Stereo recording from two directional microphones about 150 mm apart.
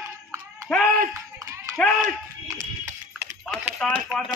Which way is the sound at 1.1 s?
20° right (ahead or behind).